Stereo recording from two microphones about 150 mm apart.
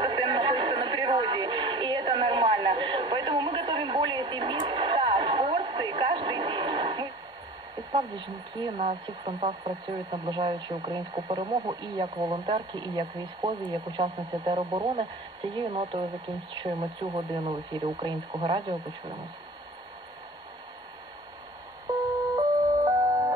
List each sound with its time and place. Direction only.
0.0 s music: 35° right (ahead or behind)
7.9 s speech: 30° right (ahead or behind)
22.8 s a sound: 30° right (ahead or behind)